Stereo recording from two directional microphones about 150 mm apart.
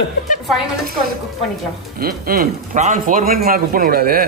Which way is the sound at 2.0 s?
75° right (ahead or behind).